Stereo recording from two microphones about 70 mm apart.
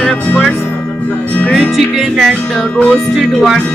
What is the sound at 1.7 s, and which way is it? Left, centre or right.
Music, centre.